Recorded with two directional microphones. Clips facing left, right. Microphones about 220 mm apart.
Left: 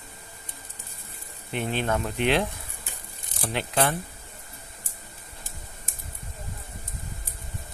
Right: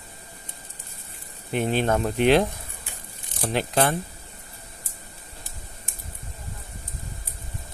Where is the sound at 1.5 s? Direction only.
40° right (ahead or behind).